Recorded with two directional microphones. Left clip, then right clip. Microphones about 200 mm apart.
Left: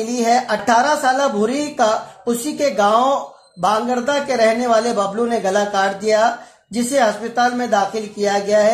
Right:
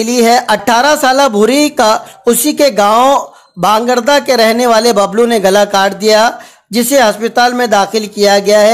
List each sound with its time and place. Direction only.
0.0 s a man's voice: 45° right (ahead or behind)